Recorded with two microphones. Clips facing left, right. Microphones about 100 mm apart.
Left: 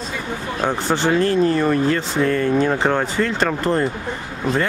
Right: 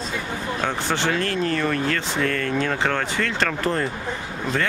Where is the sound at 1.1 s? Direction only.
25° left (ahead or behind).